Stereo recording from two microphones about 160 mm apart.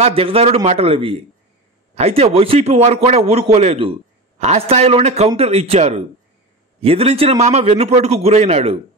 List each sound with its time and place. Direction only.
0.0 s a man's voice: 35° right (ahead or behind)